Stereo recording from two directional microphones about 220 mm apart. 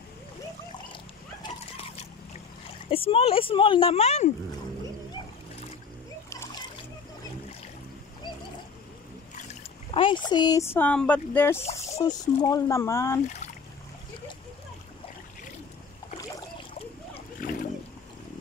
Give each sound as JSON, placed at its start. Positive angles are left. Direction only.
{"t": 1.4, "sound": "splash", "side_deg": 25}
{"t": 2.9, "sound": "speech", "side_deg": 25}
{"t": 9.8, "sound": "speech", "side_deg": 25}
{"t": 11.6, "sound": "speech", "side_deg": 30}
{"t": 12.0, "sound": "speech", "side_deg": 15}
{"t": 17.4, "sound": "boat", "side_deg": 40}